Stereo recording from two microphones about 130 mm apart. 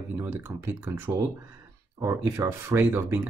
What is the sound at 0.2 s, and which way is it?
Speech, 20° right (ahead or behind).